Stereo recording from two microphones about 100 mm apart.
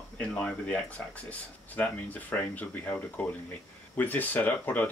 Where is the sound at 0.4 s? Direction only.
15° left (ahead or behind).